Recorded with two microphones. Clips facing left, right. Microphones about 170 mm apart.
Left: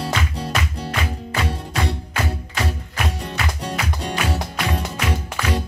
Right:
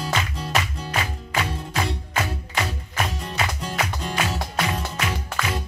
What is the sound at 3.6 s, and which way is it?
Music, 35° left (ahead or behind).